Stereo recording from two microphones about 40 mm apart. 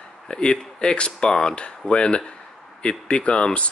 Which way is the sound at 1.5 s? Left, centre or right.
Left.